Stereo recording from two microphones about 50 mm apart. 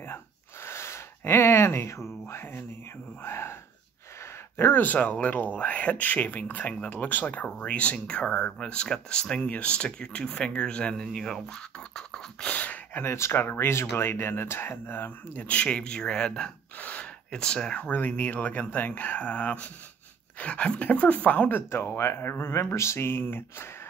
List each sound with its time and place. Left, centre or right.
0.7 s a sound: left
2.2 s speech: left
4.6 s speech: left; by 11.1 s centre
11.1 s speech: centre
12.4 s speech: left
13.0 s speech: left
13.4 s speech: left
15.5 s speech: left
16.7 s gasp: left
17.3 s speech: centre
17.7 s speech: left
21.6 s speech: left